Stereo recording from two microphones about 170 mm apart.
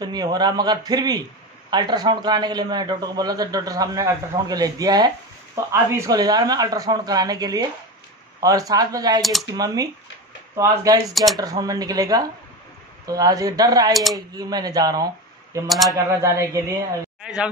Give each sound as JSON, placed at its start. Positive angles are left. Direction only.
{"t": 0.0, "sound": "a man's voice", "side_deg": -25}
{"t": 9.2, "sound": "speech", "side_deg": 0}
{"t": 10.5, "sound": "a man's voice", "side_deg": -20}
{"t": 17.2, "sound": "a sound", "side_deg": -5}